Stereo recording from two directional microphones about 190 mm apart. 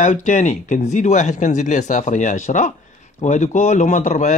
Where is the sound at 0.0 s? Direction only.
40° left (ahead or behind).